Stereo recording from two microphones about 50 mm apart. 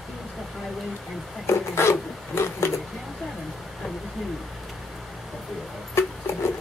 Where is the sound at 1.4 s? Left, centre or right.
Left.